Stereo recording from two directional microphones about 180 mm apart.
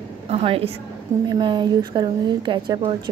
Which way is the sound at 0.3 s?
35° right (ahead or behind).